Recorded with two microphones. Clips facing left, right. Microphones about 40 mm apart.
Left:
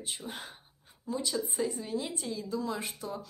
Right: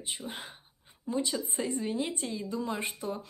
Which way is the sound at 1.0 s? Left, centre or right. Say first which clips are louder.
Right 1 dB; right.